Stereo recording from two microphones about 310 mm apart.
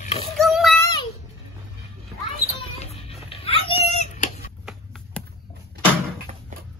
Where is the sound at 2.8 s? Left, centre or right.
Centre.